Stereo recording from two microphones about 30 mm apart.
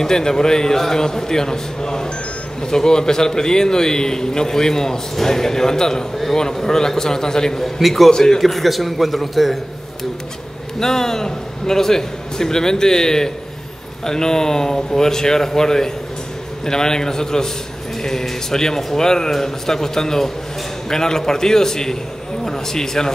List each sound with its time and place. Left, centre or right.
0.0 s a man's voice: centre
7.6 s a man's voice: centre
10.8 s a man's voice: centre